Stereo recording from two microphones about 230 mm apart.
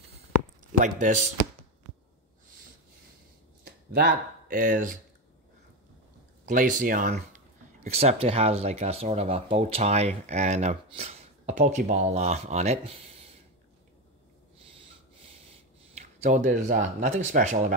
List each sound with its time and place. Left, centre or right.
0.7 s speech: right
3.6 s speech: right
6.4 s speech: right
15.1 s a sound: right